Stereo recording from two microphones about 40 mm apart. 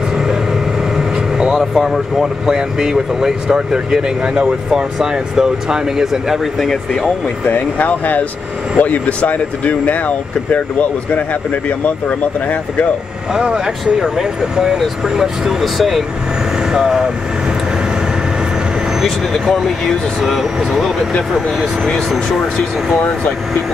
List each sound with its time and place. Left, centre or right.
0.9 s vehicle: centre
1.6 s speech: centre
7.4 s speech: left
13.3 s speech: centre
19.5 s speech: centre
21.3 s speech: centre